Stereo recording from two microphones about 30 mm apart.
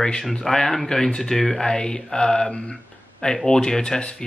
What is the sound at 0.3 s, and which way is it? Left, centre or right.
Mantra, centre.